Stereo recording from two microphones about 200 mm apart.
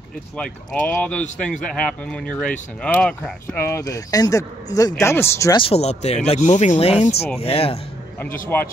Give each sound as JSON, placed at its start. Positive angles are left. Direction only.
{"t": 0.4, "sound": "speech", "side_deg": 5}
{"t": 5.6, "sound": "speech", "side_deg": 30}
{"t": 8.5, "sound": "speech", "side_deg": 10}